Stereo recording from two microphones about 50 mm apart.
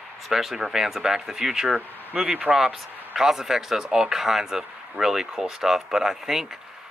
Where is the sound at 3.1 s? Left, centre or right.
Centre.